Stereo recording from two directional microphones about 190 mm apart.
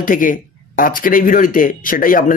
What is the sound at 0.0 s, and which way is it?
Speech, 45° left (ahead or behind).